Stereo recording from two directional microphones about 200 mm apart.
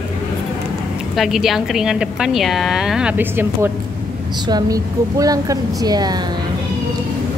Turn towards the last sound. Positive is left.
turn(degrees=-20)  # may be behind; listen again after turning